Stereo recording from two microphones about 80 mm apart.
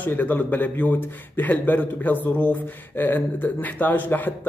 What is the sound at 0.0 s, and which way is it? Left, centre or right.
Speech, left.